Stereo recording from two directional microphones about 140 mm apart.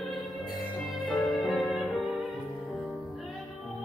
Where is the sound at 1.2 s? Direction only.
Centre (ahead or behind).